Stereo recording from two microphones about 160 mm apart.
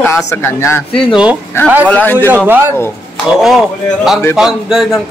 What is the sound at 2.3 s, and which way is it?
Speech, 15° right (ahead or behind).